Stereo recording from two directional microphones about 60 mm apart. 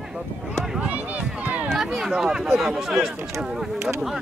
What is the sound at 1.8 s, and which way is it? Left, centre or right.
Speech, centre.